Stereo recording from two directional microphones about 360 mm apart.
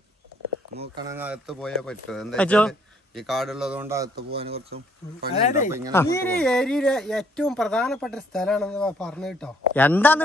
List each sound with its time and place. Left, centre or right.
0.7 s speech: centre
4.1 s speech: right
5.3 s speech: left
5.9 s speech: centre